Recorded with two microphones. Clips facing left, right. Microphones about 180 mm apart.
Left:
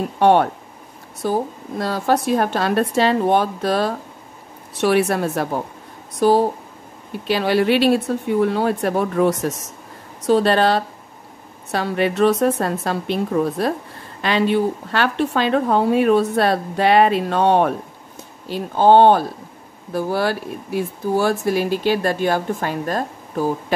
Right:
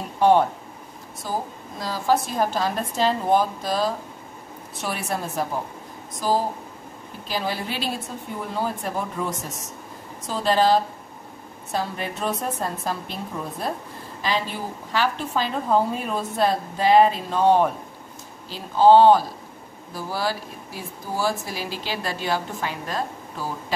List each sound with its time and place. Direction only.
0.2 s a woman's voice: 65° left (ahead or behind)
18.5 s speech: 55° left (ahead or behind)